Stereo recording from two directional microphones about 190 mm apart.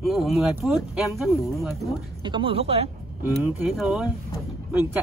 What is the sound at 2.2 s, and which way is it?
Speech, 25° right (ahead or behind).